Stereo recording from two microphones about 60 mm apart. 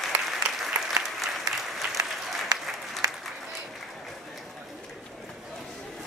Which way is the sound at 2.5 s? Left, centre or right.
Right.